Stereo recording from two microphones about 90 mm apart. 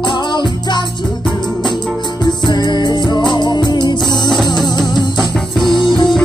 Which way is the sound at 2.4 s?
55° left (ahead or behind).